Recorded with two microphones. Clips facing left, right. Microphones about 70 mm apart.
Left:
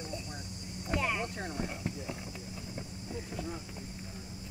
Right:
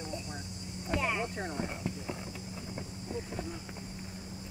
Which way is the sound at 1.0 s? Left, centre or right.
Centre.